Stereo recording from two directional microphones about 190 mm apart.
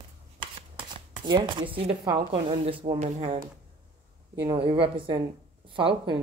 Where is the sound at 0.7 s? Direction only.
25° right (ahead or behind).